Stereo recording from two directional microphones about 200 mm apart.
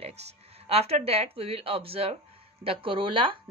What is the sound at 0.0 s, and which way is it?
A woman's voice, 30° right (ahead or behind).